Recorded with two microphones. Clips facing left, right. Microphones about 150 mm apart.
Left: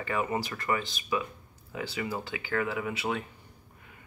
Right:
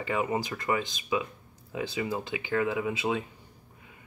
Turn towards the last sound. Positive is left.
turn(degrees=-20)  # may be behind; listen again after turning